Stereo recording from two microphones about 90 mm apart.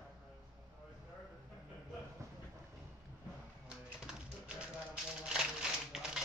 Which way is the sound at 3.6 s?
10° right (ahead or behind).